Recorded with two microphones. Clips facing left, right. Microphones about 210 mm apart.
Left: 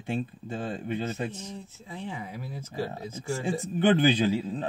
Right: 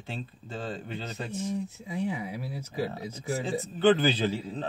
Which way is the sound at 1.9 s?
10° right (ahead or behind).